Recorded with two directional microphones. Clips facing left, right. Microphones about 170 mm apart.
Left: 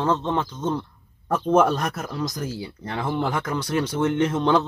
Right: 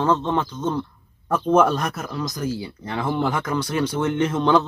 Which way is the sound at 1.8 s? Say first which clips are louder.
Even; 35° left (ahead or behind).